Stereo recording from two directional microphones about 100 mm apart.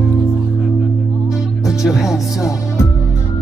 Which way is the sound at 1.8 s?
5° right (ahead or behind).